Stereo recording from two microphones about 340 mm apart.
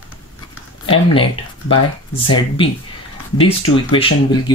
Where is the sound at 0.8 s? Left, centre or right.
Centre.